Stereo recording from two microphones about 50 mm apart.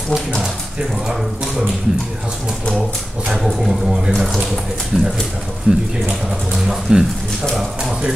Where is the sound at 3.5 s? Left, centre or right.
Centre.